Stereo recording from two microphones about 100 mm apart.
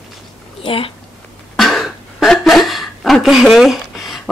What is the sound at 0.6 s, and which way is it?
Speech, 65° left (ahead or behind).